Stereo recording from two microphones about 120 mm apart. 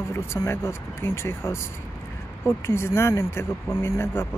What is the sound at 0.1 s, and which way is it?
Speech, 20° left (ahead or behind).